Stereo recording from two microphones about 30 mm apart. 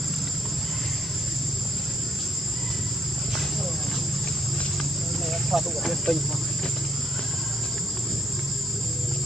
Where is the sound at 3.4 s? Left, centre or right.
Centre.